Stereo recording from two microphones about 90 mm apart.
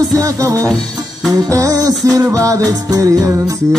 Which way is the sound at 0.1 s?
40° right (ahead or behind).